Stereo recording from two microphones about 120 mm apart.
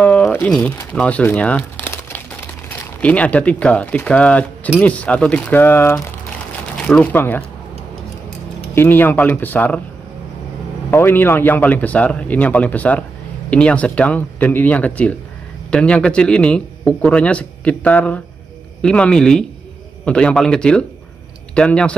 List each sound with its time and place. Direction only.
0.0 s a man's voice: 15° left (ahead or behind)
8.7 s a man's voice: 15° left (ahead or behind)
10.9 s a man's voice: 20° left (ahead or behind)